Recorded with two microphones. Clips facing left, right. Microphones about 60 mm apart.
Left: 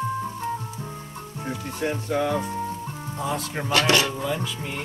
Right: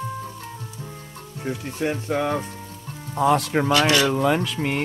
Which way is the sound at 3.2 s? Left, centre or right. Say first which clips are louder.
Right 10 dB; right.